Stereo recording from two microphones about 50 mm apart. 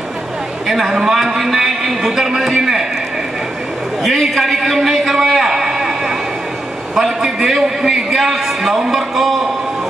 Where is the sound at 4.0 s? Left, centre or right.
Centre.